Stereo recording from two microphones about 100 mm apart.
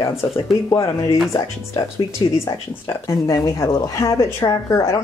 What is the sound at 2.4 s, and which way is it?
A woman's voice, 35° left (ahead or behind).